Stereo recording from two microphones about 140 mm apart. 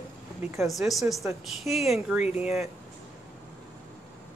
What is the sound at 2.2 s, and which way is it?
Speech, 50° left (ahead or behind).